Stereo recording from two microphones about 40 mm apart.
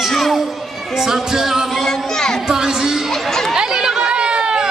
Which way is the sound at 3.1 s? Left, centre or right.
Centre.